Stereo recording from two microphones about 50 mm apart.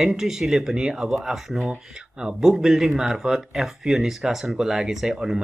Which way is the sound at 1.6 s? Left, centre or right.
Centre.